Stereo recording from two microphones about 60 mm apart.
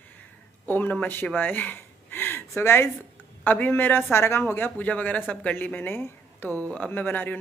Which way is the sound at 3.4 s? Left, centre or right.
Left.